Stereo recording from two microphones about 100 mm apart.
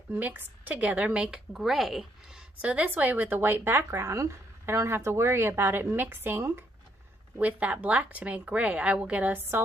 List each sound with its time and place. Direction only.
0.1 s a woman's voice: 20° right (ahead or behind)
7.3 s speech: 15° right (ahead or behind)